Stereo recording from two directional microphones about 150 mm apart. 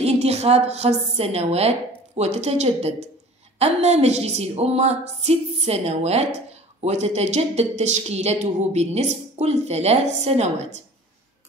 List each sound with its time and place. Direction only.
0.0 s a woman's voice: 45° right (ahead or behind)